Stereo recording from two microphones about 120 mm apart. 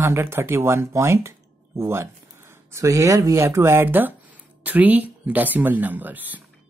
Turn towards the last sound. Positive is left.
turn(degrees=-15)  # may be behind; listen again after turning